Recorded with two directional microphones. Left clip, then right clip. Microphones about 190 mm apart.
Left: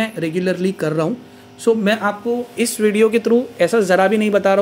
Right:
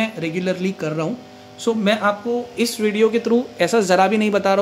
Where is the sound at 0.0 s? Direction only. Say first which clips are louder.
Left 2 dB; 10° left (ahead or behind).